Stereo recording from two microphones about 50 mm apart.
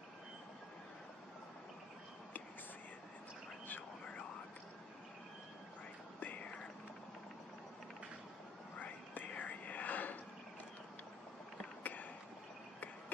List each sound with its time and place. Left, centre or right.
4.0 s whispering: left
6.1 s whispering: left
8.7 s whispering: left
11.8 s a sound: left